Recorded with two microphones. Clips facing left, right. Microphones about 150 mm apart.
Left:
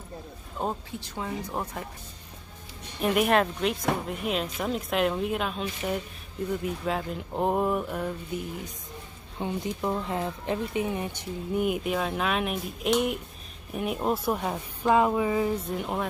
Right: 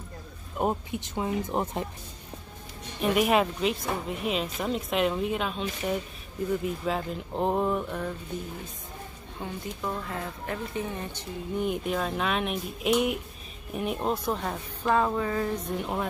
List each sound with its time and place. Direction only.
0.6 s speech: 15° right (ahead or behind)
3.0 s speech: centre (ahead or behind)
9.4 s speech: 20° left (ahead or behind); by 16.1 s centre (ahead or behind)